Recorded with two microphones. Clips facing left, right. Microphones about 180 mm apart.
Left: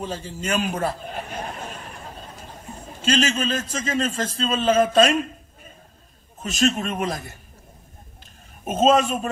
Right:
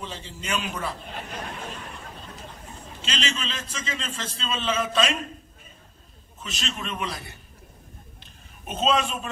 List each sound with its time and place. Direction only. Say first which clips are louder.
0.0 s a man's voice: left 7 dB; 45° left (ahead or behind)
3.0 s a man's voice: left 10 dB; 45° left (ahead or behind)
6.4 s a man's voice: left 12 dB; 45° left (ahead or behind)
8.6 s a man's voice: left 6 dB; 45° left (ahead or behind)